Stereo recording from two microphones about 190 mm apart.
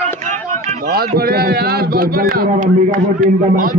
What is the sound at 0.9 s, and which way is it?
A man's voice, 55° right (ahead or behind).